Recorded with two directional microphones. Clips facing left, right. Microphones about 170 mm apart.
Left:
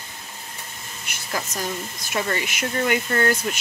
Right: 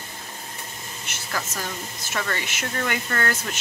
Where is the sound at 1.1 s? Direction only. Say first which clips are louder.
Left 2 dB; 15° left (ahead or behind).